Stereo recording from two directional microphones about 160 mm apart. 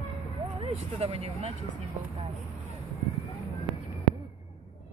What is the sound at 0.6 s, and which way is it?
Speech, 40° right (ahead or behind).